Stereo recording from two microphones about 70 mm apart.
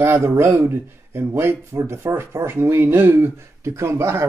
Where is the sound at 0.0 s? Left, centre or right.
Right.